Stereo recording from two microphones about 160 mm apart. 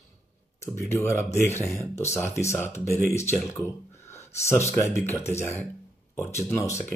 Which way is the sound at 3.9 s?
15° left (ahead or behind).